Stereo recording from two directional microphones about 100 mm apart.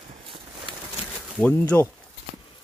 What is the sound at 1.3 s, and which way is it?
Speech, 15° left (ahead or behind).